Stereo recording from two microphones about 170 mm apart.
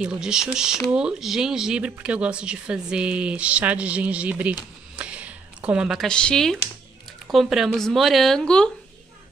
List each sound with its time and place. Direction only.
0.0 s speech: 5° right (ahead or behind)